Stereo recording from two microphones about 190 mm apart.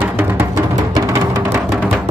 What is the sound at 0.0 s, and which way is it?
Music, 10° right (ahead or behind).